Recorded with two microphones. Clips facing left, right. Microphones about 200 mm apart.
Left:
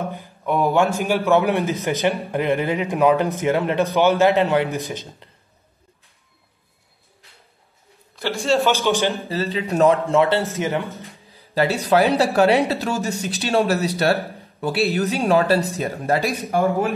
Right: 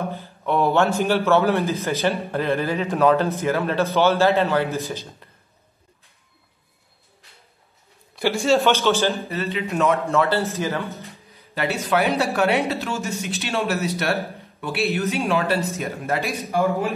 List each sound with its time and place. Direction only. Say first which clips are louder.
0.0 s a man's voice: even; 15° left (ahead or behind)
8.5 s a man's voice: even; centre (ahead or behind)
8.8 s a man's voice: even; 15° left (ahead or behind)
9.3 s speech: left 2 dB; 30° left (ahead or behind)
10.1 s a man's voice: left 3 dB; 20° left (ahead or behind)
11.3 s speech: left 5 dB; 30° left (ahead or behind)